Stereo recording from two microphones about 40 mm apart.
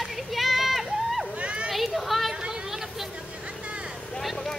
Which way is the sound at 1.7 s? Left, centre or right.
Centre.